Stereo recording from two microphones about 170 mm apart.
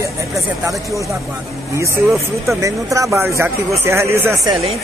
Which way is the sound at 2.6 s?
20° right (ahead or behind).